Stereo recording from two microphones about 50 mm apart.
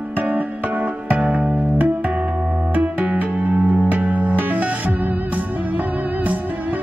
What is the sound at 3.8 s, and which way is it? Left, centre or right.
Music, right.